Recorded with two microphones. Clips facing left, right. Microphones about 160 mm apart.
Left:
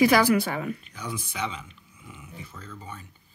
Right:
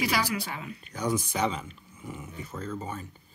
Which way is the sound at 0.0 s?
55° left (ahead or behind).